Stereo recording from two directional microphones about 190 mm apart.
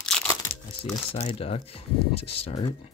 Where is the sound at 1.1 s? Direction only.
35° left (ahead or behind).